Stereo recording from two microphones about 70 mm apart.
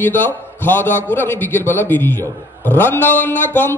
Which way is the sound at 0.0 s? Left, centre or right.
Left.